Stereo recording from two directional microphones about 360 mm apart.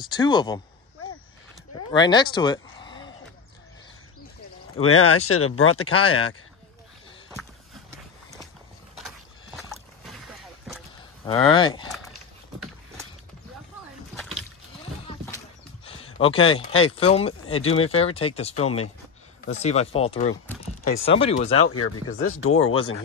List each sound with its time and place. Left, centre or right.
0.0 s speech: centre
1.9 s speech: centre
4.8 s speech: left
9.6 s rowboat: centre
11.2 s speech: centre
15.8 s speech: centre
20.9 s speech: left
21.2 s speech: centre
21.5 s speech: left